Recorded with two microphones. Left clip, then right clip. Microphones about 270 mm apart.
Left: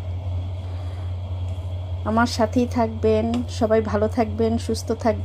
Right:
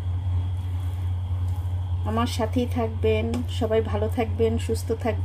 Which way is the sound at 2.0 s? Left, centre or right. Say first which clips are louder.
Left 6 dB; centre.